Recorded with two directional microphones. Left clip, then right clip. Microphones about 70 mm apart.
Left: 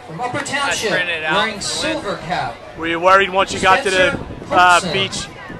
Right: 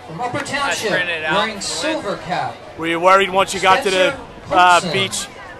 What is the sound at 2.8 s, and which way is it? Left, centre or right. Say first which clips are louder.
A man's voice: even; right.